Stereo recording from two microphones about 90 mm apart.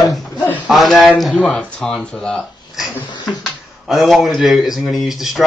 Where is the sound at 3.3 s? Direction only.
Centre (ahead or behind).